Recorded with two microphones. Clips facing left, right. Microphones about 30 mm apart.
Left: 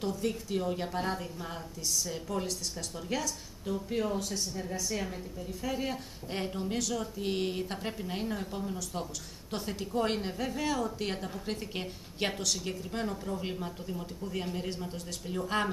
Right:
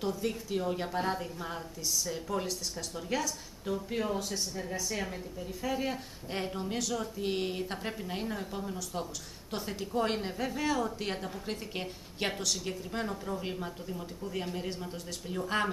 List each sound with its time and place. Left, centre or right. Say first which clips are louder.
0.0 s speech: even; centre